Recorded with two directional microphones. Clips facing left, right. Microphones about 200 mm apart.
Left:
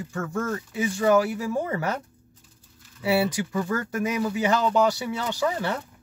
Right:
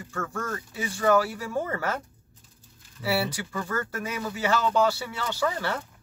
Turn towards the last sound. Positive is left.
turn(degrees=15)  # may be behind; listen again after turning